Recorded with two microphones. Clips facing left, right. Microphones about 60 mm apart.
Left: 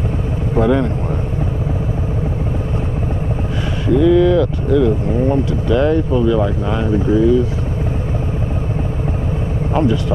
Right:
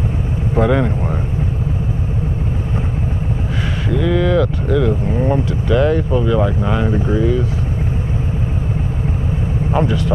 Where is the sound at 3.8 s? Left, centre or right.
Centre.